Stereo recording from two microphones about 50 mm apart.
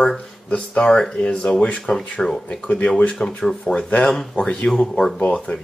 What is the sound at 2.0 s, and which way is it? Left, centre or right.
Speech, centre.